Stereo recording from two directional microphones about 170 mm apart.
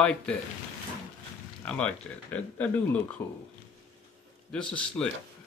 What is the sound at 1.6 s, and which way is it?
Speech, 5° left (ahead or behind).